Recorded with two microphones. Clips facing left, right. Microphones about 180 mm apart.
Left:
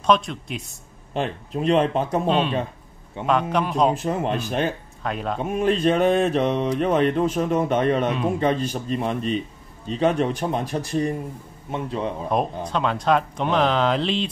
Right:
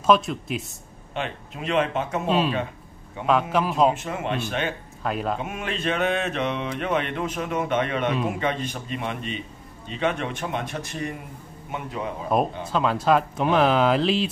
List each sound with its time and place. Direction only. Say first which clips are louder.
0.0 s speech: right 1 dB; 5° right (ahead or behind)
1.1 s speech: left 5 dB; 35° left (ahead or behind)
2.2 s speech: left 1 dB; centre (ahead or behind)
3.9 s speech: left 5 dB; 35° left (ahead or behind)
5.0 s speech: right 1 dB; centre (ahead or behind)
5.4 s speech: left 9 dB; 35° left (ahead or behind)
12.3 s speech: right 3 dB; 5° right (ahead or behind)